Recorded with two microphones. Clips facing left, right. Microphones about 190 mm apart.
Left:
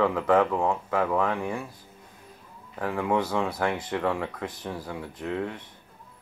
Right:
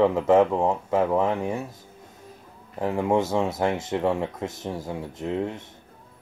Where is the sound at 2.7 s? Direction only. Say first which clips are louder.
Right 3 dB; 25° right (ahead or behind).